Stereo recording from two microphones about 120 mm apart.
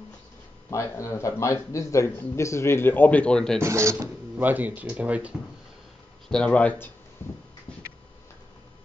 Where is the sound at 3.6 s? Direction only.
25° right (ahead or behind).